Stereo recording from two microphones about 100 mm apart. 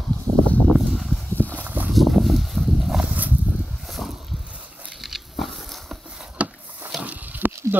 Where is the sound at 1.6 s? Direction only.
20° right (ahead or behind).